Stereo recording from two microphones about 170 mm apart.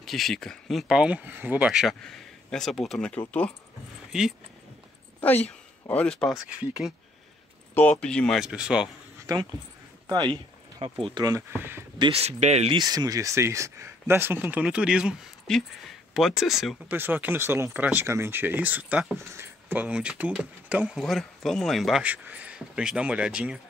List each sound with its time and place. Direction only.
0.0 s speech: centre (ahead or behind)
4.1 s speech: 5° right (ahead or behind)
5.2 s speech: 10° left (ahead or behind)
6.5 s speech: 5° right (ahead or behind)
7.7 s speech: 10° left (ahead or behind)
9.2 s speech: 20° right (ahead or behind)
12.0 s speech: 35° right (ahead or behind)
12.7 s speech: 25° right (ahead or behind); by 23.6 s 5° right (ahead or behind)